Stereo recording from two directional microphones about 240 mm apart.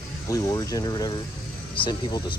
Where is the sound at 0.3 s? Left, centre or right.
Centre.